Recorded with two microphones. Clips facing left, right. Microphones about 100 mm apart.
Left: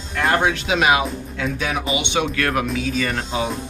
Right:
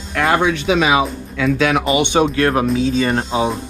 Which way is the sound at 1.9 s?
45° right (ahead or behind).